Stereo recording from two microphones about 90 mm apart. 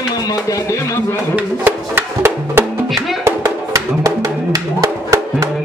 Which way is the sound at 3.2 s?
35° right (ahead or behind).